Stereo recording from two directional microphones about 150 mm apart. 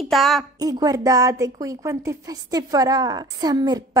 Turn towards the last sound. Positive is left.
turn(degrees=-25)  # may be behind; listen again after turning